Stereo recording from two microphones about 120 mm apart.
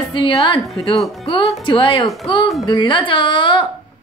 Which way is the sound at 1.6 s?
45° left (ahead or behind).